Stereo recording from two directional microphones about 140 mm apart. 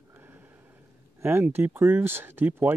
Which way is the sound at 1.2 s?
15° right (ahead or behind).